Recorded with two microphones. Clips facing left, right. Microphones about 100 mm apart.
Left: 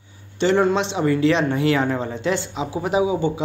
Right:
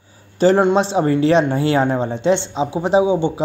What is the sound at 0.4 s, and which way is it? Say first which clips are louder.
A man's voice: right 4 dB; 40° right (ahead or behind).